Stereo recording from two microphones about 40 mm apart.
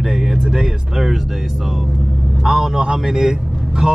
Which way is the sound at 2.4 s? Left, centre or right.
Centre.